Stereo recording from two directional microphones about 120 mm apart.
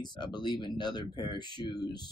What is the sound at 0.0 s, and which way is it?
Speech, 40° left (ahead or behind).